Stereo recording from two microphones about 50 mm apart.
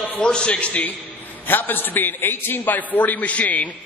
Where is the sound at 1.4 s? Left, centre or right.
Left.